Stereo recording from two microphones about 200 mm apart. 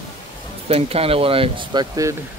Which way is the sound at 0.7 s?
30° right (ahead or behind).